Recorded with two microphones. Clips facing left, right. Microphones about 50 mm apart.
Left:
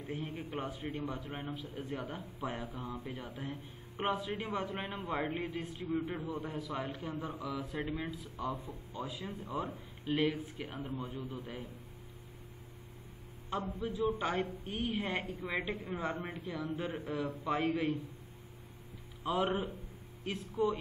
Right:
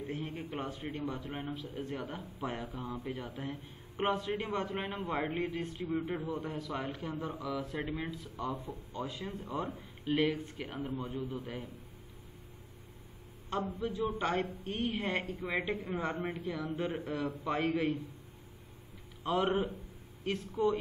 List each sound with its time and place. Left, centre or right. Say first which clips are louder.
0.0 s a man's voice: right 1 dB; centre
13.8 s a man's voice: left 1 dB; centre
19.2 s a man's voice: right 2 dB; centre